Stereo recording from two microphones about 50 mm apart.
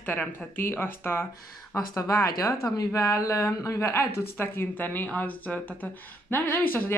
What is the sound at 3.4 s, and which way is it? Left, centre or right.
Speech, left.